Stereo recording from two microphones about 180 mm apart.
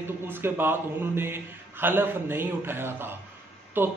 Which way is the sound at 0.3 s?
10° right (ahead or behind).